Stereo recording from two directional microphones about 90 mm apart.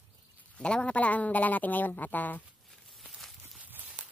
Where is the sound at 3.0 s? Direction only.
5° left (ahead or behind).